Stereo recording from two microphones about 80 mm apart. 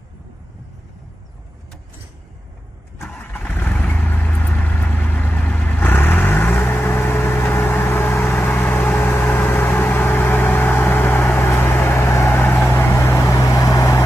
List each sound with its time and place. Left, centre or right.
3.2 s vehicle: left